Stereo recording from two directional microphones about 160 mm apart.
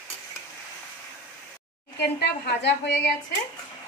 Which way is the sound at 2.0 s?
90° left.